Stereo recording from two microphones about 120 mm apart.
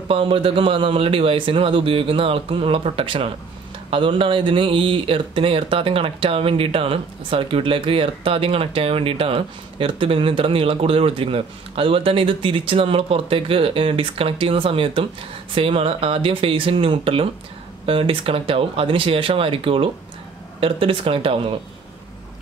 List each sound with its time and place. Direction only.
0.1 s speech: 50° right (ahead or behind)